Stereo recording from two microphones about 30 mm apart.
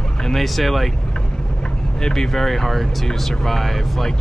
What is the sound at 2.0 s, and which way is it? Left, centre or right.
Speech, left.